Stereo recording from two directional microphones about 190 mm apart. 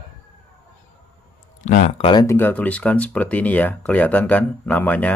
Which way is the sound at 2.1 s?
20° left (ahead or behind).